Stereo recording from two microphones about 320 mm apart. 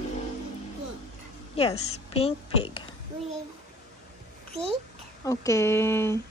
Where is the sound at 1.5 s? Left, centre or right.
Centre.